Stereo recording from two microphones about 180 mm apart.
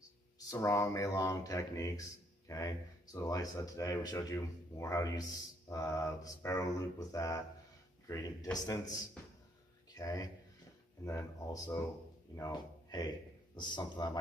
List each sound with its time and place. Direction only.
0.5 s speech: 15° left (ahead or behind)
9.9 s a man's voice: 20° left (ahead or behind)